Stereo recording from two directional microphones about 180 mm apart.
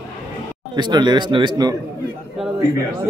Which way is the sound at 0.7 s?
25° right (ahead or behind).